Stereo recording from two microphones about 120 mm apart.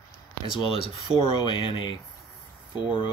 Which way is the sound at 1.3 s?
45° left (ahead or behind).